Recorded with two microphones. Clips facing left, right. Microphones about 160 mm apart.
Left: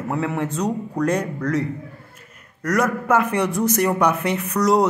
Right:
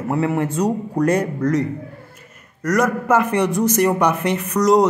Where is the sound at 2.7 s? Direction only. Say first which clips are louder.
Right 2 dB; centre (ahead or behind).